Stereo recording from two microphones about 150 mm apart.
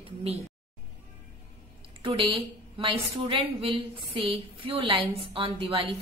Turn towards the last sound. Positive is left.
turn(degrees=-35)  # may be behind; listen again after turning